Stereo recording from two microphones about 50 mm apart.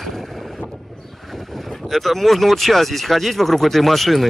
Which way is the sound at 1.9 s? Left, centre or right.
Centre.